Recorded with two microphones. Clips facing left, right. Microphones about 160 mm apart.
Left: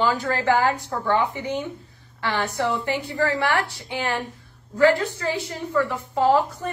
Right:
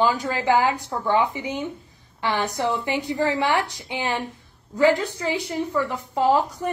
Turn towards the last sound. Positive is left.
turn(degrees=-15)  # may be behind; listen again after turning